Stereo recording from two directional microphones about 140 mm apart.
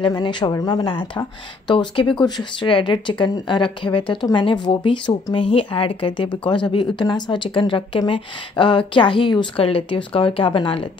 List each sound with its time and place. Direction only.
0.0 s speech: 35° left (ahead or behind)